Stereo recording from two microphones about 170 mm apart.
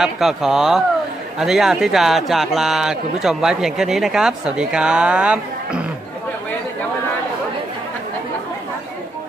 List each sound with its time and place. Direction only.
0.0 s speech: centre (ahead or behind)